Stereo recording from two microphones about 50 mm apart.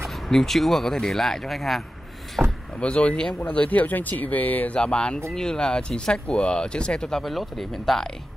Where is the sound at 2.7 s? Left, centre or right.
Left.